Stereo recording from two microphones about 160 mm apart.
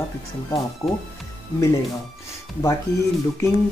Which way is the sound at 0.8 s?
20° left (ahead or behind).